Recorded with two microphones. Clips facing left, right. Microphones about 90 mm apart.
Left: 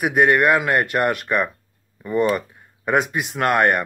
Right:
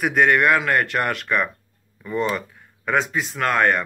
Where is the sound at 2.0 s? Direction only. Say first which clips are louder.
Left 4 dB; 10° left (ahead or behind).